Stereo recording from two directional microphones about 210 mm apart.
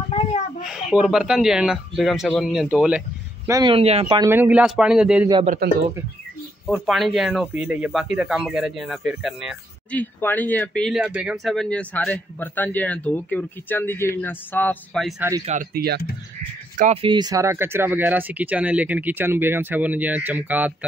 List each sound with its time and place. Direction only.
0.1 s a sound: 30° left (ahead or behind)
0.7 s speech: centre (ahead or behind)
3.4 s a man's voice: 15° right (ahead or behind)
3.7 s speech: 30° right (ahead or behind)
4.3 s speech: 10° right (ahead or behind)
6.6 s speech: centre (ahead or behind)
15.4 s speech: 35° right (ahead or behind); by 20.7 s 10° right (ahead or behind)